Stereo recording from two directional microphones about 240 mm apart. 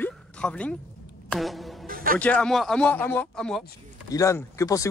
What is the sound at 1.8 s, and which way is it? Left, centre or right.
Music, right.